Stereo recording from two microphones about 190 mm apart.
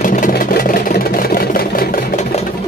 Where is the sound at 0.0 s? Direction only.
45° left (ahead or behind).